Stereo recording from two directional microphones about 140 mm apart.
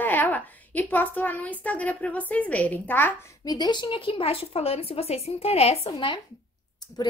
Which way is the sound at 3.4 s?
30° left (ahead or behind).